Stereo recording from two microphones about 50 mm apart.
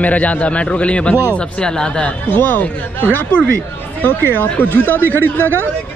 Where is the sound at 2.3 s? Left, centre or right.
Left.